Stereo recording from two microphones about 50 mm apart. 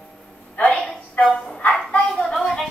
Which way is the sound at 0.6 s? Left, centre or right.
Centre.